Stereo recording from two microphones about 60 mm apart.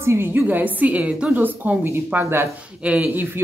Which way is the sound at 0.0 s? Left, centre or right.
Right.